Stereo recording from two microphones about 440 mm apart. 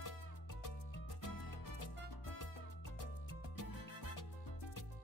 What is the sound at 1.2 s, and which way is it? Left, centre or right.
Music, left.